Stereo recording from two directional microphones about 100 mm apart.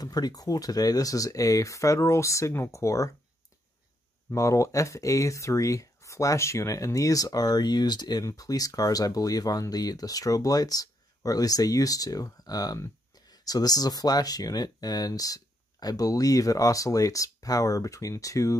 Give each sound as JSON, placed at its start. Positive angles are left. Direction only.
{"t": 0.0, "sound": "speech", "side_deg": 40}
{"t": 4.3, "sound": "speech", "side_deg": 30}